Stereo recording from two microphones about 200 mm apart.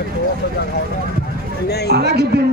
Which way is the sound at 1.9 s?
55° right (ahead or behind).